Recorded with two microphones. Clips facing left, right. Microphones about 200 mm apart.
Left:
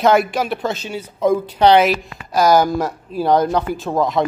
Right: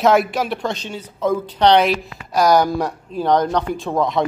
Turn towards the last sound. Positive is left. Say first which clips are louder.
# left 1 dB
turn(degrees=0)  # may be behind; listen again after turning